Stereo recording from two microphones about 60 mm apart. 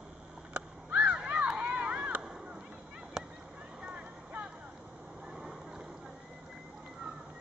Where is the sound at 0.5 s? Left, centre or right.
Right.